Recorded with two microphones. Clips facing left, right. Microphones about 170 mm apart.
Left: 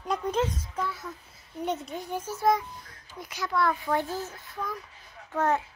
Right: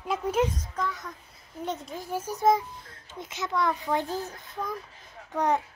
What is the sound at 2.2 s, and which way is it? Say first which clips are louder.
A child's voice: right 2 dB; 20° right (ahead or behind).